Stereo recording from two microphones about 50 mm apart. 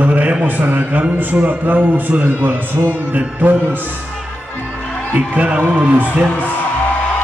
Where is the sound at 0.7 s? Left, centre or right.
Right.